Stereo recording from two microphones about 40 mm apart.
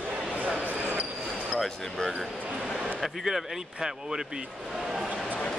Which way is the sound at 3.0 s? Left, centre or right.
Centre.